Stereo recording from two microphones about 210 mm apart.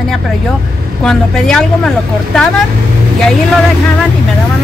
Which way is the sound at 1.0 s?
5° left (ahead or behind).